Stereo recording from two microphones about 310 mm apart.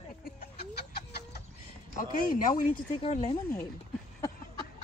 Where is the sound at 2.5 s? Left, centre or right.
Left.